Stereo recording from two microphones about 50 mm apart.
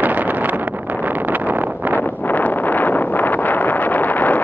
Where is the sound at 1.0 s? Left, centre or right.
Right.